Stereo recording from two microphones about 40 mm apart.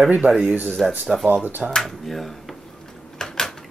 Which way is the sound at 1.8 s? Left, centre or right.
Centre.